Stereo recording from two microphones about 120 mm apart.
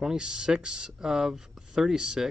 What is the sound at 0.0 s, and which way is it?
Speech, 5° right (ahead or behind).